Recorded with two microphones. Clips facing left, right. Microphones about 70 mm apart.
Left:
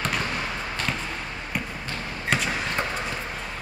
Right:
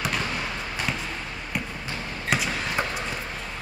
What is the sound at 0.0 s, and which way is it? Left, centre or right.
Fireworks, centre.